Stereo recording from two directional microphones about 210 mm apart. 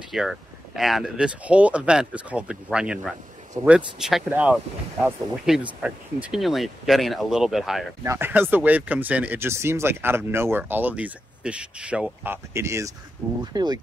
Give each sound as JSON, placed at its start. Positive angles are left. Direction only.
{"t": 0.1, "sound": "speech", "side_deg": 0}